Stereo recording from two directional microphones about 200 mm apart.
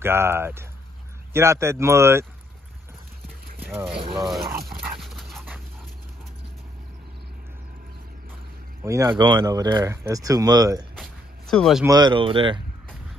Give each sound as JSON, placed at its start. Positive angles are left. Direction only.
{"t": 0.0, "sound": "speech", "side_deg": -10}
{"t": 3.5, "sound": "a sound", "side_deg": -10}
{"t": 4.1, "sound": "speech", "side_deg": 0}
{"t": 5.0, "sound": "dog", "side_deg": 0}
{"t": 8.8, "sound": "speech", "side_deg": -15}
{"t": 11.0, "sound": "a sound", "side_deg": 0}
{"t": 11.8, "sound": "speech", "side_deg": -20}